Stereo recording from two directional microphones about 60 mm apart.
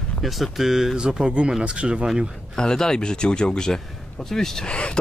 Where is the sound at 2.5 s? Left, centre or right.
Centre.